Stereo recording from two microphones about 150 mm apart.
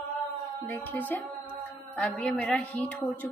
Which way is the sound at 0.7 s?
10° left (ahead or behind).